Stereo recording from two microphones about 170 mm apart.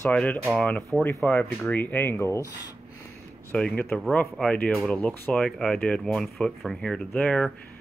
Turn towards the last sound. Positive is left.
turn(degrees=5)  # may be behind; listen again after turning